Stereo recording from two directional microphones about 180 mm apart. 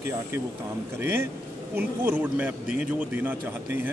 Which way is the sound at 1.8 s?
10° right (ahead or behind).